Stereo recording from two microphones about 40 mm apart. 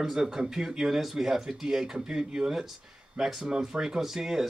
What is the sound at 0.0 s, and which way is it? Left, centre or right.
Speech, centre.